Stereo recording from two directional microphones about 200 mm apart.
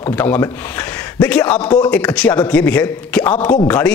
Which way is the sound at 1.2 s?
10° left (ahead or behind).